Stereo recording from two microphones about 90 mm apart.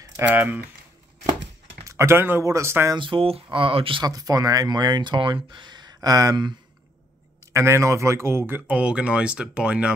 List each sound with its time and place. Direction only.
0.3 s speech: 20° right (ahead or behind)
1.9 s speech: 30° right (ahead or behind)
3.0 s speech: 80° right
4.0 s speech: 45° right (ahead or behind)
7.5 s speech: 30° right (ahead or behind); by 9.9 s 10° right (ahead or behind)